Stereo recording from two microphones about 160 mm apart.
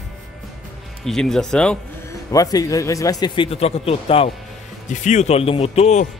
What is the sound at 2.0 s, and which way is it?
A man's voice, 20° left (ahead or behind).